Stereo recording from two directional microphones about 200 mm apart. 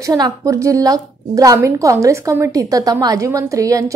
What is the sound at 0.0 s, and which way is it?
A woman's voice, 15° right (ahead or behind).